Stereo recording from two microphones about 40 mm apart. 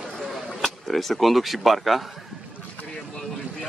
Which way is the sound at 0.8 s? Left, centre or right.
Centre.